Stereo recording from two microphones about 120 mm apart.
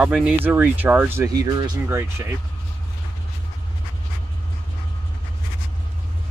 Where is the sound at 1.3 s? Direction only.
30° right (ahead or behind).